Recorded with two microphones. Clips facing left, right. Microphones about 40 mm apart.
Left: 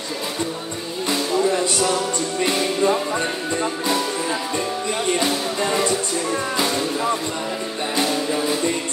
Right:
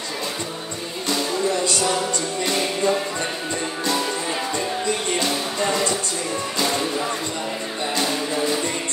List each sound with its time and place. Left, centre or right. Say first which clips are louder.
2.4 s music: left 3 dB; left